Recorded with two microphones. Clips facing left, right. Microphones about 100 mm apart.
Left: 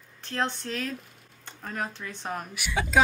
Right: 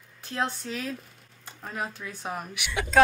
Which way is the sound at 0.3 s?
5° right (ahead or behind).